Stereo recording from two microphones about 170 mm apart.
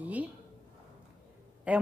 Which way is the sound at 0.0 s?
10° right (ahead or behind).